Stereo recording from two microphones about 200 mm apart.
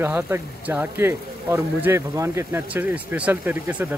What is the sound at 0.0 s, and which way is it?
Speech, 10° right (ahead or behind).